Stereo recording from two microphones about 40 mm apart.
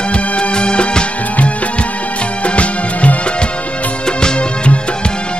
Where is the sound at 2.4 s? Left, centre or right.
Left.